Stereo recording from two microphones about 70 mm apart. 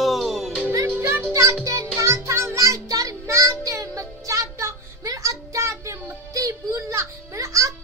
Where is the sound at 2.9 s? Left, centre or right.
Right.